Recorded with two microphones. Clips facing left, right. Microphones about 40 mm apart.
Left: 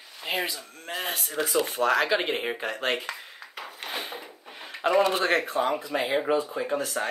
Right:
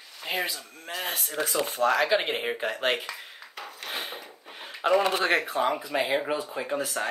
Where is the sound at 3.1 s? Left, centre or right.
Left.